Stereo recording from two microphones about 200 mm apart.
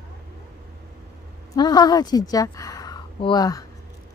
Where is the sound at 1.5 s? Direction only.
20° left (ahead or behind).